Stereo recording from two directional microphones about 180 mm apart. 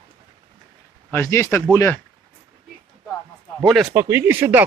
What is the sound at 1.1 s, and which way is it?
Speech, 15° left (ahead or behind).